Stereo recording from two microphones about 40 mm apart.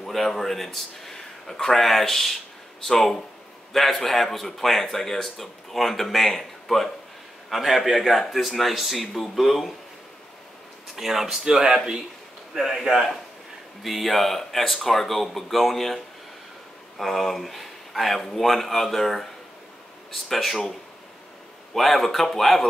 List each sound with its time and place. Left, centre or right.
0.0 s a man's voice: centre
11.0 s a man's voice: centre
12.5 s a man's voice: centre
17.0 s a man's voice: centre
21.7 s a man's voice: centre